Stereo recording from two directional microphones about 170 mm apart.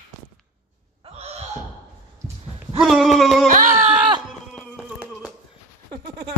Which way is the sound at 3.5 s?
50° right (ahead or behind).